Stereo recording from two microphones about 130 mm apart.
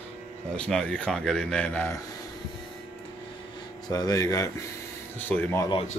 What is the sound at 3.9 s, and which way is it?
Speech, 25° left (ahead or behind).